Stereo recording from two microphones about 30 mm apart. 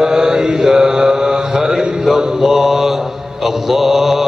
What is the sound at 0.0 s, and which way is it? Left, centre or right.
Mantra, right.